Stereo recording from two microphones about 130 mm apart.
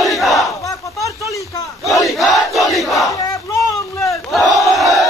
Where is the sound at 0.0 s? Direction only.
Centre (ahead or behind).